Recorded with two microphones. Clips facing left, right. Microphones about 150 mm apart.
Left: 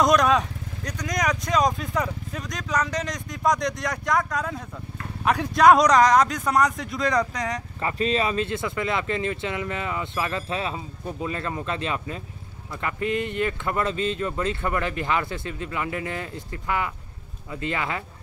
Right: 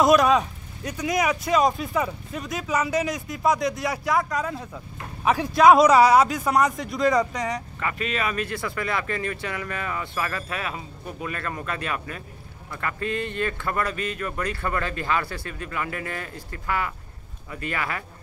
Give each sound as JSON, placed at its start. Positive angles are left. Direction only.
{"t": 0.0, "sound": "speech", "side_deg": -5}
{"t": 7.8, "sound": "speech", "side_deg": 30}